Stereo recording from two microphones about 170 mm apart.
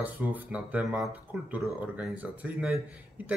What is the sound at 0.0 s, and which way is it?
Speech, 10° right (ahead or behind).